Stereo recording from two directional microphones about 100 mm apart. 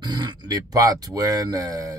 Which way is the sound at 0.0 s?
45° right (ahead or behind).